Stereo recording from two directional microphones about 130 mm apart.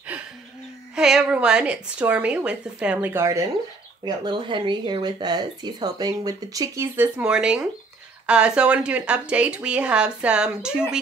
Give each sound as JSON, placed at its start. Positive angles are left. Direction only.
{"t": 0.9, "sound": "a woman's voice", "side_deg": -5}
{"t": 3.1, "sound": "speech", "side_deg": -20}
{"t": 4.0, "sound": "speech", "side_deg": -35}
{"t": 7.0, "sound": "a woman's voice", "side_deg": -10}